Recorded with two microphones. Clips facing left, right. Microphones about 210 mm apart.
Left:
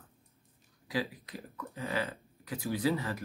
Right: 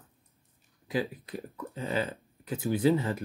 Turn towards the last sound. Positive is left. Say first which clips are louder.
# right 6 dB
turn(degrees=-25)  # may be behind; listen again after turning